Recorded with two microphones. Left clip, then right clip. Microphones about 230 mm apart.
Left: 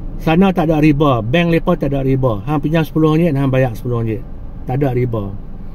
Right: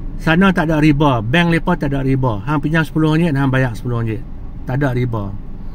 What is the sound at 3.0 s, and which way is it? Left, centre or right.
Speech, right.